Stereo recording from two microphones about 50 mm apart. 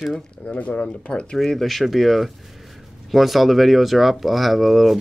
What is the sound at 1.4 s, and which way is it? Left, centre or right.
Speech, centre.